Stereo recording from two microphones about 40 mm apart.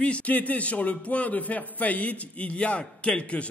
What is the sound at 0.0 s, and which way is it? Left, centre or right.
A man's voice, left.